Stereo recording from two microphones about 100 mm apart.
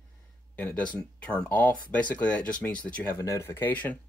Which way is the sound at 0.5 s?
15° left (ahead or behind).